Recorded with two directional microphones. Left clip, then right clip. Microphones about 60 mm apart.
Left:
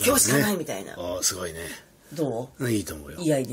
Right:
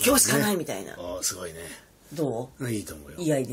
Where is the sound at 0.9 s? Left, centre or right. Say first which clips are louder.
Left 4 dB; left.